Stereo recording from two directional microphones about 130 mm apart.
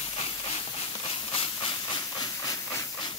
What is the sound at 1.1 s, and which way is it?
Steam, 45° left (ahead or behind).